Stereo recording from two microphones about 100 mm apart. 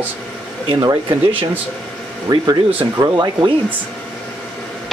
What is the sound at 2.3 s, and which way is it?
Speech, 45° right (ahead or behind).